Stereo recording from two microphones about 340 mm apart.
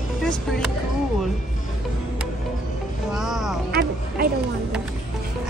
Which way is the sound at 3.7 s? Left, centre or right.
Right.